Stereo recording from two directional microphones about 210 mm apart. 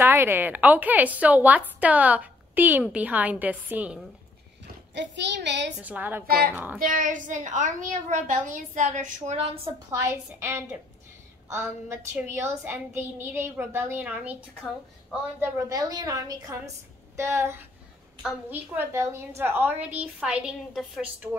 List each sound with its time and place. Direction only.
0.0 s a woman's voice: 10° right (ahead or behind)
4.9 s a child's voice: 55° right (ahead or behind)
5.8 s a woman's voice: 10° right (ahead or behind)
6.2 s a child's voice: 45° right (ahead or behind)
6.5 s a woman's voice: 10° right (ahead or behind)
6.8 s a woman's voice: 40° right (ahead or behind)
9.8 s a woman's voice: 15° right (ahead or behind)
15.7 s a woman's voice: 20° right (ahead or behind)